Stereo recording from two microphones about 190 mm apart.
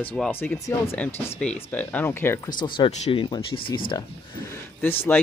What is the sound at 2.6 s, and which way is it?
Speech, 25° left (ahead or behind).